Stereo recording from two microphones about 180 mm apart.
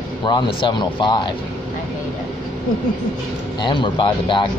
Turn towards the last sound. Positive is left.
turn(degrees=25)  # may be behind; listen again after turning